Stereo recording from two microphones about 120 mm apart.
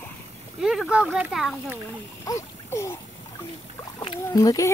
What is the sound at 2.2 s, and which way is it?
Speech, 25° left (ahead or behind).